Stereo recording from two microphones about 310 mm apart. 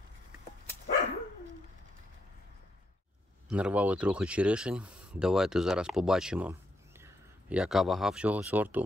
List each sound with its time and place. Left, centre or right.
3.4 s speech: centre